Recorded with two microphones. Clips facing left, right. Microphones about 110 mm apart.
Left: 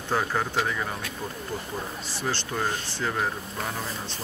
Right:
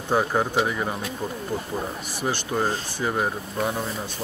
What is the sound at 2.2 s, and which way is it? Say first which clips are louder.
Speech: right 4 dB; 15° right (ahead or behind).